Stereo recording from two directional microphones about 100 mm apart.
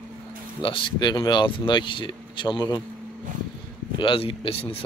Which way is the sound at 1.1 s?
45° left (ahead or behind).